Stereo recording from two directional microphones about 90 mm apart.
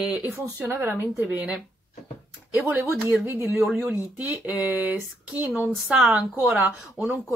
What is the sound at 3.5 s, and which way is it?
Speech, 5° right (ahead or behind).